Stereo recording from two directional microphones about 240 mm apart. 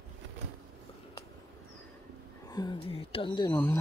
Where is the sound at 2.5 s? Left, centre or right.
Centre.